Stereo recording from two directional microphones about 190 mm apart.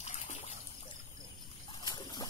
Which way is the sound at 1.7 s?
25° left (ahead or behind).